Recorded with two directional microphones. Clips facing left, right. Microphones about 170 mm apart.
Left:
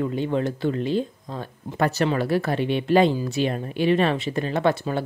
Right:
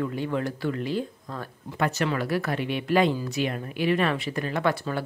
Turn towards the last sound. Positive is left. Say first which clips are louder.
# left 4 dB
turn(degrees=25)  # may be behind; listen again after turning